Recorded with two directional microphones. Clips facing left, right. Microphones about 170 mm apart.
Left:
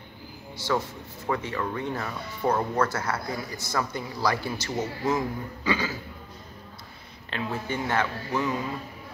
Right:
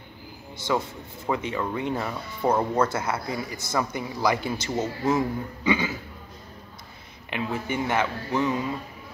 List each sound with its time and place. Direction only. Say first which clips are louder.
0.7 s speech: right 1 dB; 20° right (ahead or behind)
7.2 s speech: right 2 dB; 15° right (ahead or behind)